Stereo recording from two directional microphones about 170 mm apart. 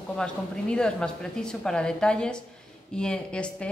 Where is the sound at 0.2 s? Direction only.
5° left (ahead or behind).